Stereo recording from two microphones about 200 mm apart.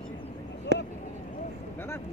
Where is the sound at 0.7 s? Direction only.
60° right (ahead or behind).